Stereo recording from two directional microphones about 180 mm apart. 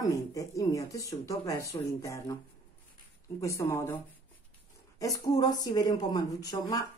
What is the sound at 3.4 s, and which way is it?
Speech, 15° left (ahead or behind).